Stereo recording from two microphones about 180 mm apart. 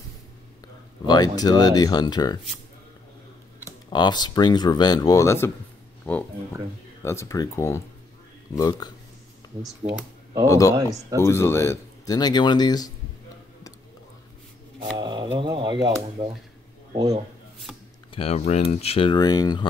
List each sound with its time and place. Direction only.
1.0 s speech: 20° left (ahead or behind)
3.6 s speech: 25° left (ahead or behind)
10.8 s speech: 20° right (ahead or behind)
11.1 s speech: 15° left (ahead or behind)
15.0 s pigeon: 25° right (ahead or behind)
15.3 s speech: 25° right (ahead or behind)
17.7 s chopping: 5° right (ahead or behind)
18.1 s speech: 35° left (ahead or behind)